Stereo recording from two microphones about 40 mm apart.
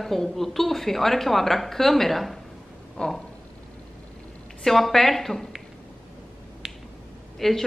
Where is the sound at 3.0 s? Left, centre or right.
Left.